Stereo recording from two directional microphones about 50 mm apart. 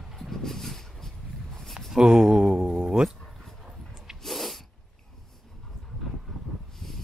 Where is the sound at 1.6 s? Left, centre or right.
Centre.